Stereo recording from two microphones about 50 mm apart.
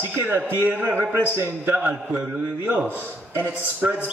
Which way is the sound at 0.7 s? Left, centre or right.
Right.